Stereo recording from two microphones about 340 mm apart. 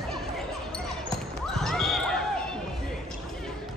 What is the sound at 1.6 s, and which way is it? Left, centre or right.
Basketball bounce, centre.